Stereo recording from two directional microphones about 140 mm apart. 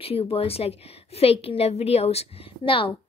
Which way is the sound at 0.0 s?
45° left (ahead or behind).